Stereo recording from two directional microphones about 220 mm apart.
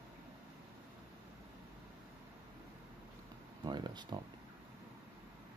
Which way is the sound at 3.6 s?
20° right (ahead or behind).